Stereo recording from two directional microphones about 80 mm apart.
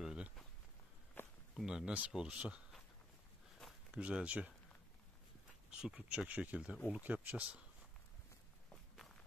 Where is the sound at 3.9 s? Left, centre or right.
Centre.